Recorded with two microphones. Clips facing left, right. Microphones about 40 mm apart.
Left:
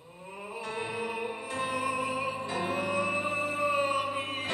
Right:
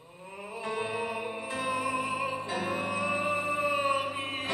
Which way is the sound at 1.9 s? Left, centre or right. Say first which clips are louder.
Even; right.